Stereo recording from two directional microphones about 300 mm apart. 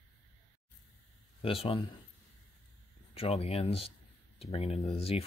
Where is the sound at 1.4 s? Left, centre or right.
Centre.